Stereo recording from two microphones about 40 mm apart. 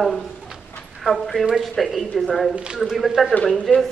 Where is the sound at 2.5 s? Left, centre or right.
Right.